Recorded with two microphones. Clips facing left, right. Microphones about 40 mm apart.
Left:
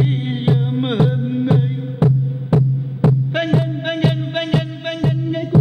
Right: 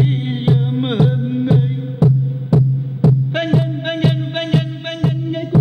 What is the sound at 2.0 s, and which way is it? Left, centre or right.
Music, left.